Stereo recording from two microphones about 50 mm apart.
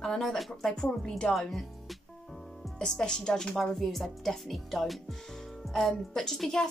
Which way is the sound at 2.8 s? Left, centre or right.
Centre.